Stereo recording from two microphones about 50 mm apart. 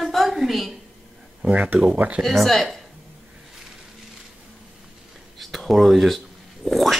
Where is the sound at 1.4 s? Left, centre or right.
Right.